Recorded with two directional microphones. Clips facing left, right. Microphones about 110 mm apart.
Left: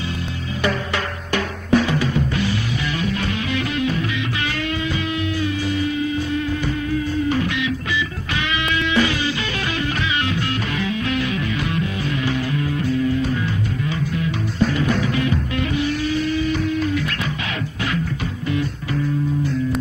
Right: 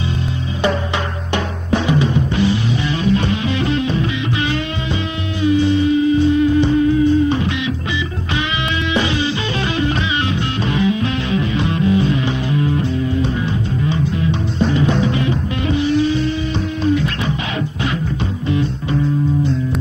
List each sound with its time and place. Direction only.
0.6 s music: 25° right (ahead or behind)
8.9 s music: 25° right (ahead or behind)
14.7 s music: 25° right (ahead or behind)